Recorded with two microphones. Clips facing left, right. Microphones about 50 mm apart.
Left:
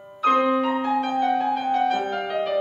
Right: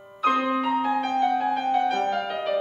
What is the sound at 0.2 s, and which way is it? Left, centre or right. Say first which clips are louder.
Music: left 3 dB; centre.